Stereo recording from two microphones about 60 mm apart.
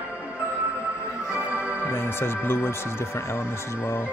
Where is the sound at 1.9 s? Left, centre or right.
Left.